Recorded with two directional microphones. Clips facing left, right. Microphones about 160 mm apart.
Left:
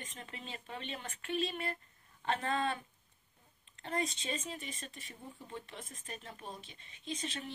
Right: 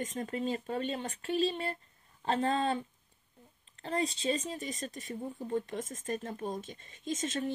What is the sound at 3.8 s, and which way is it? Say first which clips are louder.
Speech: right 5 dB; 30° right (ahead or behind).